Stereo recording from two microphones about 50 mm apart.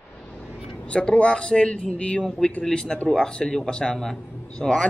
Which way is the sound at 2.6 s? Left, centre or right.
Centre.